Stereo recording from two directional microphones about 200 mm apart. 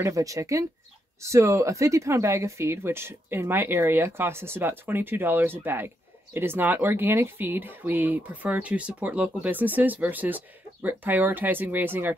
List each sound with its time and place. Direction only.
0.0 s speech: 15° right (ahead or behind)